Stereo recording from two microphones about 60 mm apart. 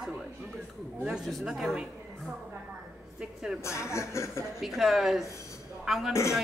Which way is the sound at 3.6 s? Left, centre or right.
Left.